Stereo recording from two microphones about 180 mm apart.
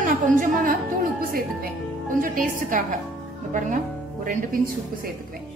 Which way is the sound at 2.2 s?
50° right (ahead or behind).